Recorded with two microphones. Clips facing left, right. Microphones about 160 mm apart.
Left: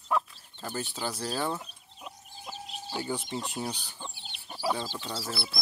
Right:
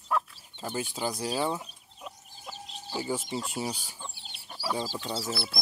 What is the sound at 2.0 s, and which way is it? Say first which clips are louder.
Bird: even; 10° left (ahead or behind).